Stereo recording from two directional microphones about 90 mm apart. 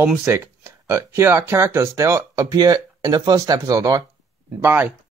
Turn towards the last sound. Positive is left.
turn(degrees=-20)  # may be behind; listen again after turning